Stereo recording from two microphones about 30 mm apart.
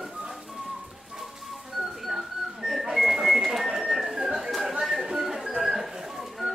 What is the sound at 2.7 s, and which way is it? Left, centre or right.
Pigeon, centre.